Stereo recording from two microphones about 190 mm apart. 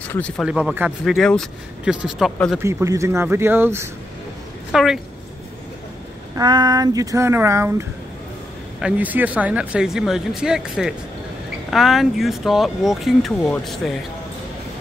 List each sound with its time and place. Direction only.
0.1 s speech: 5° left (ahead or behind)
0.5 s speech: 5° right (ahead or behind)
2.6 s speech: 15° right (ahead or behind)
4.7 s speech: centre (ahead or behind)
6.3 s speech: 20° right (ahead or behind)
8.8 s speech: 10° right (ahead or behind)